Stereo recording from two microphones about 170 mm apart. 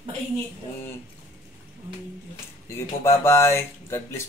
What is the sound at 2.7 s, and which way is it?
A man's voice, 15° left (ahead or behind).